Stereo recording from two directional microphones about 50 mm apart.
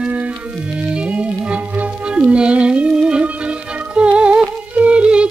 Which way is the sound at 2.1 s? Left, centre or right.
Right.